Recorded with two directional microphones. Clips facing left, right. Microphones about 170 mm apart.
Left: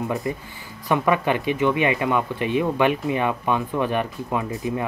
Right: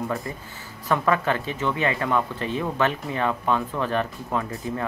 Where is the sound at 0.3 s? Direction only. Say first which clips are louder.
Left 6 dB; 15° left (ahead or behind).